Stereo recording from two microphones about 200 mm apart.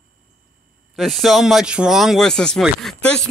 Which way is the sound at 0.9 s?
Centre (ahead or behind).